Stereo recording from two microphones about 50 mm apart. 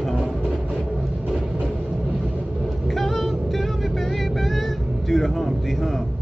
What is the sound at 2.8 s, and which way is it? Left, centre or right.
Vehicle, centre.